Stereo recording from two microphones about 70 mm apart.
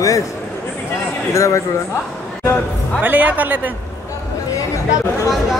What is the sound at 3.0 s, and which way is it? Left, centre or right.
Speech, right.